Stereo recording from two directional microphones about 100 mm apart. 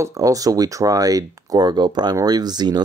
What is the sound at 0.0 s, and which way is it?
Speech, 35° right (ahead or behind).